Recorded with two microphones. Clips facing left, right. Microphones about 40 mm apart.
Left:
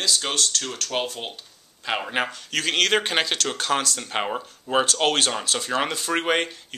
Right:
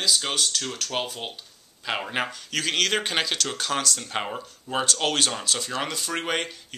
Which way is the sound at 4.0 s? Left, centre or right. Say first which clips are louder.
Left 3 dB; centre.